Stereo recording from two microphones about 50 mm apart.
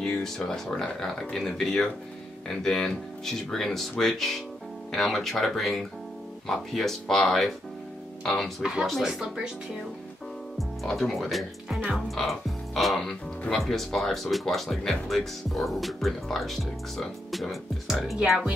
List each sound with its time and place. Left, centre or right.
0.0 s speech: centre
10.8 s speech: centre